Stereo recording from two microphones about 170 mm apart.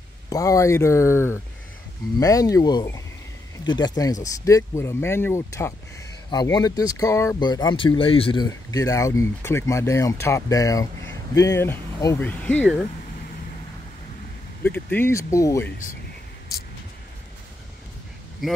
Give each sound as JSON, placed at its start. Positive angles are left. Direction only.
{"t": 0.3, "sound": "speech", "side_deg": 20}
{"t": 8.5, "sound": "speech", "side_deg": 20}
{"t": 14.6, "sound": "speech", "side_deg": 10}
{"t": 18.4, "sound": "speech", "side_deg": 0}